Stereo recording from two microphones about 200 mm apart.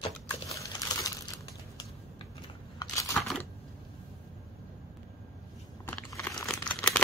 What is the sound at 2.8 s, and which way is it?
Crumpling, 15° left (ahead or behind).